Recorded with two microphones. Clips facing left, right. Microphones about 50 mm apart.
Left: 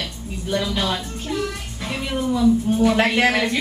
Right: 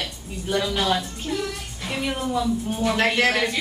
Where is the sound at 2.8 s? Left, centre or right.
Centre.